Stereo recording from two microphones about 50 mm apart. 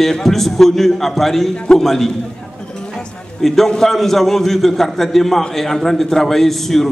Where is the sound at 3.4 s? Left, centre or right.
Centre.